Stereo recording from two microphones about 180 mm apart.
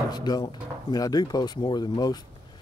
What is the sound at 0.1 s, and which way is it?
Speech, 20° left (ahead or behind).